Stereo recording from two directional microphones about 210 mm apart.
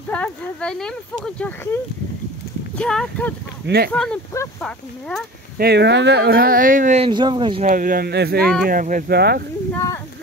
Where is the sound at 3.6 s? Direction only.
50° right (ahead or behind).